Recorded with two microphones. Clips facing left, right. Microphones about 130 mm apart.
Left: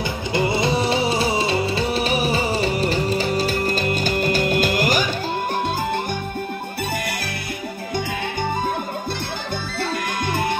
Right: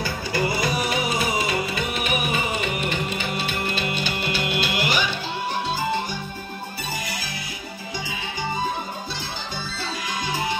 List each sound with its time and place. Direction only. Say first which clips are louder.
0.0 s music: left 3 dB; 20° left (ahead or behind); by 5.1 s 45° left (ahead or behind)
9.8 s music: left 6 dB; 55° left (ahead or behind)